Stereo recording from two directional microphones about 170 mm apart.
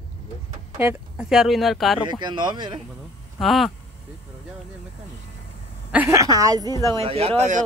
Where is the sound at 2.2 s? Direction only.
25° right (ahead or behind).